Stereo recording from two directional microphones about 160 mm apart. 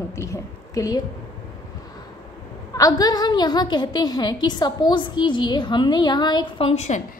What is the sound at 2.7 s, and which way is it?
A woman's voice, 20° left (ahead or behind).